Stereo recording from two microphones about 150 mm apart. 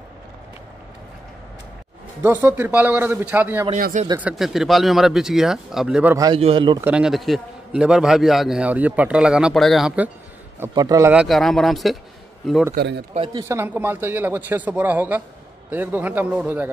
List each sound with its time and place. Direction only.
2.2 s speech: 15° right (ahead or behind)
3.7 s speech: 55° right (ahead or behind)
4.2 s a man's voice: 5° right (ahead or behind)
6.1 s a man's voice: 25° right (ahead or behind)
6.8 s a man's voice: 5° right (ahead or behind)
10.7 s a man's voice: 25° right (ahead or behind)
11.2 s a man's voice: centre (ahead or behind)
13.3 s speech: 20° right (ahead or behind)